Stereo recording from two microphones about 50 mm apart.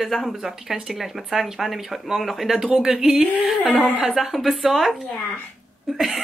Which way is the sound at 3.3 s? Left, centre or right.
Right.